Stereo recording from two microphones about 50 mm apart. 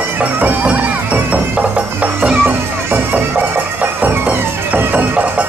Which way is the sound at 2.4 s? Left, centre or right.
Right.